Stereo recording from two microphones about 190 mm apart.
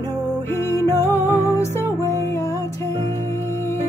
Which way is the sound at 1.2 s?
35° right (ahead or behind).